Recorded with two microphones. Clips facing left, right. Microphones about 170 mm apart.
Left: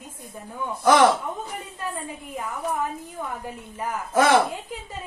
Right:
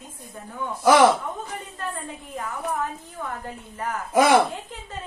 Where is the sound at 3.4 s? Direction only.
10° left (ahead or behind).